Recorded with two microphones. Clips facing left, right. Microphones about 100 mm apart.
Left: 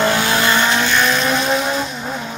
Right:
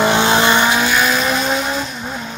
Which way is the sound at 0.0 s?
25° right (ahead or behind).